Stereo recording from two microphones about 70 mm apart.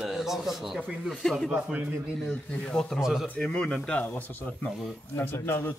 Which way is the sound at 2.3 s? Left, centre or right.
Centre.